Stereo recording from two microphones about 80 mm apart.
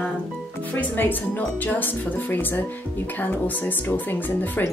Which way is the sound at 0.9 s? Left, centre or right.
Left.